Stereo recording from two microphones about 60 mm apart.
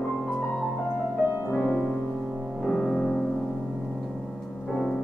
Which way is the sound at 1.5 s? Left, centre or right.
Centre.